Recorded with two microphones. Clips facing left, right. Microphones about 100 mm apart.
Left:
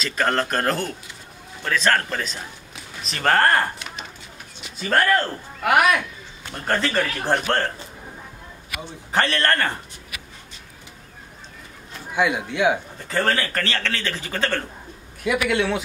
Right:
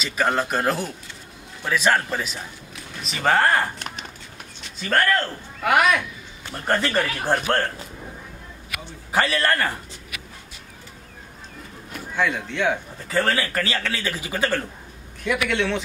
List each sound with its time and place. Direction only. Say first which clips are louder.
0.0 s speech: even; 5° right (ahead or behind)
4.8 s a man's voice: left 2 dB; 10° left (ahead or behind); by 7.6 s 5° right (ahead or behind)
9.1 s speech: even; 5° right (ahead or behind)
12.1 s a man's voice: left 2 dB; 15° left (ahead or behind)
13.1 s speech: even; 10° right (ahead or behind)
15.2 s a man's voice: left 2 dB; 10° left (ahead or behind)